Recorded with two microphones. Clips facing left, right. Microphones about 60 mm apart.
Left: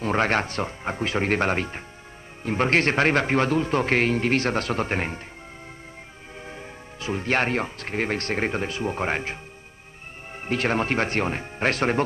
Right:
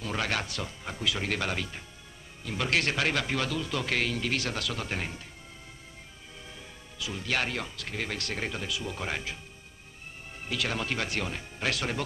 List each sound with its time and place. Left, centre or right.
0.0 s a man's voice: left
6.4 s a man's voice: left